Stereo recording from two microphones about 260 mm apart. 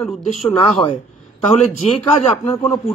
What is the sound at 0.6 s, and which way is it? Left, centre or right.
Speech, centre.